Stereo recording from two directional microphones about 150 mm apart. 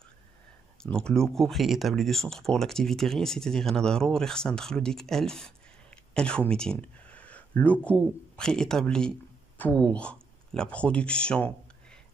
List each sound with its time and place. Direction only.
0.8 s speech: 5° left (ahead or behind)